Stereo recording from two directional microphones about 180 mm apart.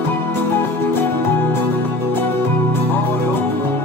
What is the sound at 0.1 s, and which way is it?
Music, 10° left (ahead or behind).